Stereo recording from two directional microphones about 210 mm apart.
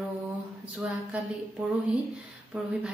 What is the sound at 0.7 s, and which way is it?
Speech, 5° right (ahead or behind).